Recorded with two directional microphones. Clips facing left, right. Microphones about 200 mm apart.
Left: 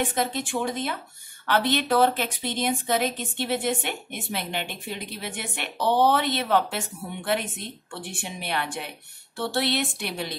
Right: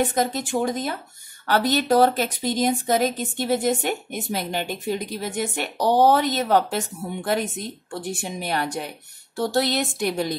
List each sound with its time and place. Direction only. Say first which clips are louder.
0.0 s speech: right 4 dB; 40° right (ahead or behind)